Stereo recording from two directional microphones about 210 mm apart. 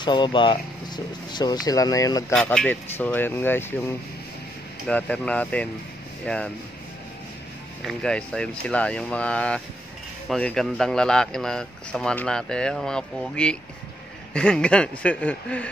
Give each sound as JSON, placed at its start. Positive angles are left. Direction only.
{"t": 0.0, "sound": "speech", "side_deg": 20}
{"t": 2.3, "sound": "speech", "side_deg": 5}
{"t": 7.8, "sound": "speech", "side_deg": 5}